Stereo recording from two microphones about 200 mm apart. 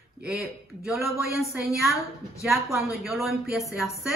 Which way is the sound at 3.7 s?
15° left (ahead or behind).